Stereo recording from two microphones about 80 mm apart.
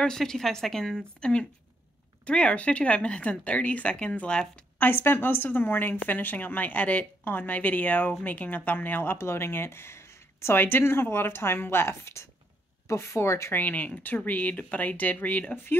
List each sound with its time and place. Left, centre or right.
0.0 s a woman's voice: centre
4.7 s speech: left
13.6 s speech: centre